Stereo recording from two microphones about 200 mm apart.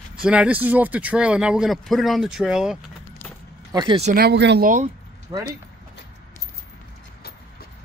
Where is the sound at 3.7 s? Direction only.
20° right (ahead or behind).